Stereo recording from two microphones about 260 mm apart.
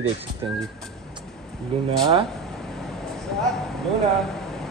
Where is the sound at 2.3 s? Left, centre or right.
Centre.